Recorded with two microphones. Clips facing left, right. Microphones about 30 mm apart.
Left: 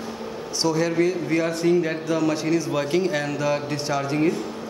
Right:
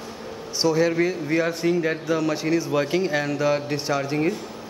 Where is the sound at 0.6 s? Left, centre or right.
Centre.